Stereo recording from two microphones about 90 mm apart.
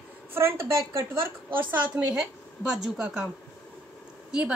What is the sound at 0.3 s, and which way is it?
A woman's voice, 25° right (ahead or behind).